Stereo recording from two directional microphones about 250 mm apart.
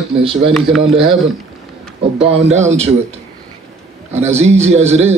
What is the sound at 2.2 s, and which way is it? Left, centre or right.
Speech, right.